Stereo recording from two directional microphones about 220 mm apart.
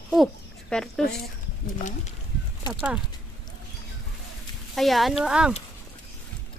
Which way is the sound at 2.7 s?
5° right (ahead or behind).